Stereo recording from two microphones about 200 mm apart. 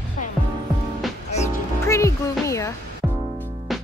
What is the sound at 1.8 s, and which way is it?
Music, 15° left (ahead or behind).